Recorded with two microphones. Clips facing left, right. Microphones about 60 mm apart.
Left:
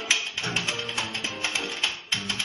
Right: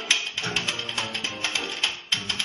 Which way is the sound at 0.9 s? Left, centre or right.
Centre.